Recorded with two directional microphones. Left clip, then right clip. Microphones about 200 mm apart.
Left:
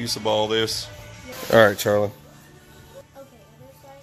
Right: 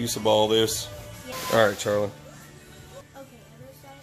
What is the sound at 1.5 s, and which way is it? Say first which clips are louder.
Speech: left 6 dB; 45° left (ahead or behind).